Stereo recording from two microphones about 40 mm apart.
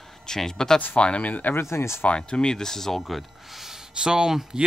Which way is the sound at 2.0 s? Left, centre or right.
Left.